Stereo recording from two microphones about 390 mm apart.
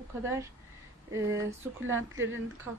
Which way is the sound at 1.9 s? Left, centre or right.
Right.